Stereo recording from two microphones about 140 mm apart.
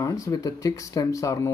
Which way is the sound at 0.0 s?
25° left (ahead or behind).